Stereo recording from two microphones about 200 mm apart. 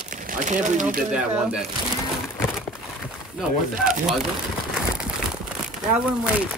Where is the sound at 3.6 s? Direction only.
40° right (ahead or behind).